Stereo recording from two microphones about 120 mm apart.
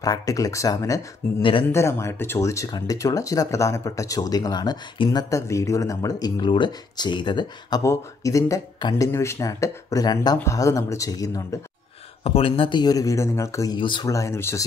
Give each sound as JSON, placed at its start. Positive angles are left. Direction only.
{"t": 0.0, "sound": "speech", "side_deg": 30}
{"t": 1.4, "sound": "speech", "side_deg": 45}
{"t": 1.7, "sound": "speech", "side_deg": 20}
{"t": 5.3, "sound": "speech", "side_deg": 25}
{"t": 7.8, "sound": "speech", "side_deg": 25}
{"t": 12.2, "sound": "speech", "side_deg": 50}
{"t": 13.7, "sound": "speech", "side_deg": 40}
{"t": 14.0, "sound": "speech", "side_deg": 25}